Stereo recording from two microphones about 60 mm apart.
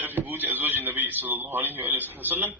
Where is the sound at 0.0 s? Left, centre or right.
Right.